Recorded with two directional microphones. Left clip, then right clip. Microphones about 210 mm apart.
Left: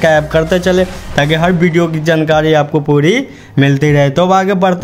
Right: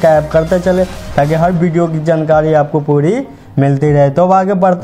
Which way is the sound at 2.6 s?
25° left (ahead or behind).